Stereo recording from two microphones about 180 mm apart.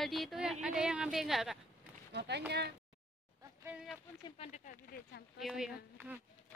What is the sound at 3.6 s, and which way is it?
Speech, 5° right (ahead or behind).